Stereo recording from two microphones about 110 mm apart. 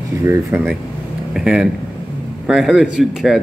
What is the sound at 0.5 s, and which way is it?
Speech, 20° right (ahead or behind).